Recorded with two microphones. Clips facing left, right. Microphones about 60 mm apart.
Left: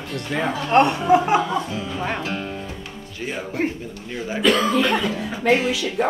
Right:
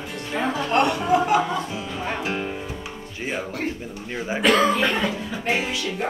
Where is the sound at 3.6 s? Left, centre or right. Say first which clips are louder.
Left 7 dB; left.